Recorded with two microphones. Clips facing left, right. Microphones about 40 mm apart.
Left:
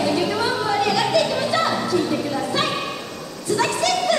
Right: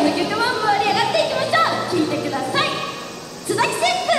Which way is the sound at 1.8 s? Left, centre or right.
Centre.